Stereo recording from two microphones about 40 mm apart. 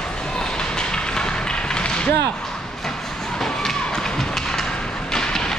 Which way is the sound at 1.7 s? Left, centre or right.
Centre.